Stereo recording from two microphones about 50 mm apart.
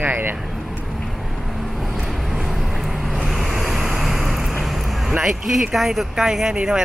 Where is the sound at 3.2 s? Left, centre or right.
Centre.